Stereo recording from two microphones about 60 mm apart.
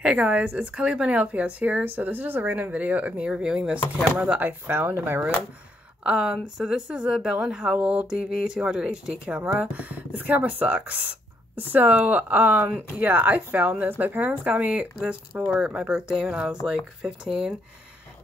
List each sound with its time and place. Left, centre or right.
0.0 s a woman's voice: centre
4.3 s speech: right
6.0 s speech: centre